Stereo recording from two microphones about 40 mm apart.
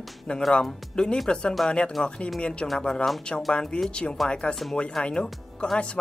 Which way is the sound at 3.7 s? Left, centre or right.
Left.